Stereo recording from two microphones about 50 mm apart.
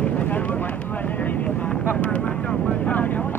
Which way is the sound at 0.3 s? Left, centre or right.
Left.